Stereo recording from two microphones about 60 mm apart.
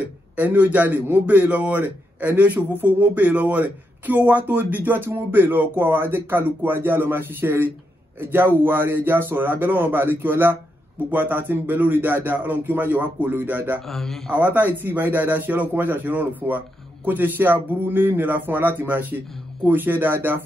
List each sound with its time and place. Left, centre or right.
0.4 s a man's voice: right
13.8 s speech: centre
14.3 s a man's voice: right